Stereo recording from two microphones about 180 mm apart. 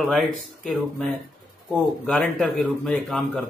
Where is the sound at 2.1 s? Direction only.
5° left (ahead or behind).